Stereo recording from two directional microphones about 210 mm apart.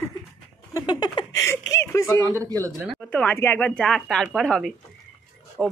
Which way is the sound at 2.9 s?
5° left (ahead or behind).